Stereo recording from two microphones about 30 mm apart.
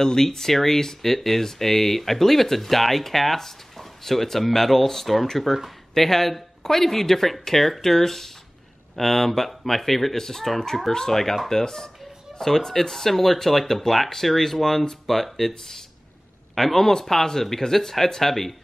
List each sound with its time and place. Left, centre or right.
0.0 s speech: centre